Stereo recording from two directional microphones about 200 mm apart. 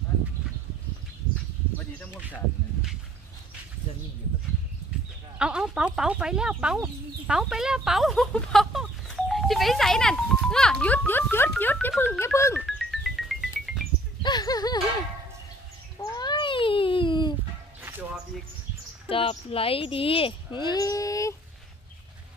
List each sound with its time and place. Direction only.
5.4 s a child's voice: 5° right (ahead or behind); by 12.6 s 10° left (ahead or behind)
12.6 s music: centre (ahead or behind)
14.2 s speech: 20° left (ahead or behind)
16.0 s a sound: 20° left (ahead or behind)
19.0 s speech: 30° left (ahead or behind)